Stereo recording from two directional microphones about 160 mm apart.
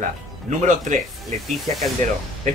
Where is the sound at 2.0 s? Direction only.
50° right (ahead or behind).